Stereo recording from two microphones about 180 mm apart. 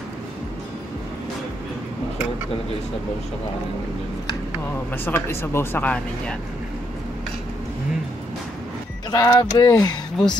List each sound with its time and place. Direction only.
4.9 s speech: 10° left (ahead or behind)
9.1 s speech: 20° left (ahead or behind)
9.8 s speech: 5° left (ahead or behind)